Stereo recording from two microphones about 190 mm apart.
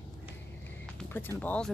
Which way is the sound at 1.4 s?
5° left (ahead or behind).